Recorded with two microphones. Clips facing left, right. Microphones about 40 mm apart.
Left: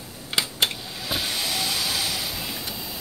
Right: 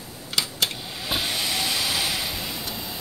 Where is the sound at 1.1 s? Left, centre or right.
Centre.